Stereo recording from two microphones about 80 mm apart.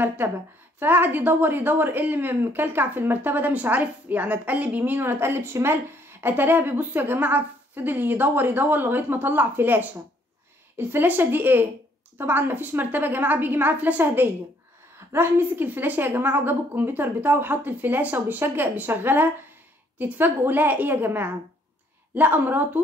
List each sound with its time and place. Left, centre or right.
0.7 s a woman's voice: right